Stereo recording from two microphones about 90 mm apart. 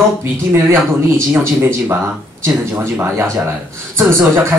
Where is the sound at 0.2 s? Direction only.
25° right (ahead or behind).